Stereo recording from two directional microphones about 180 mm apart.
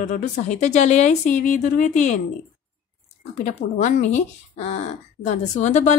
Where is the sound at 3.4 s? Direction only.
40° left (ahead or behind).